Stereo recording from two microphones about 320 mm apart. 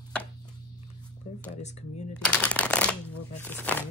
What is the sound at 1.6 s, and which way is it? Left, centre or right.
Speech, left.